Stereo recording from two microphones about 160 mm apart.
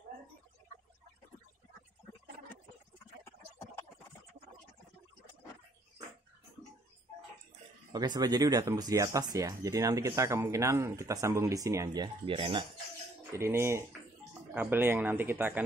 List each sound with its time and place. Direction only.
7.9 s speech: 25° right (ahead or behind)
13.3 s speech: 15° right (ahead or behind)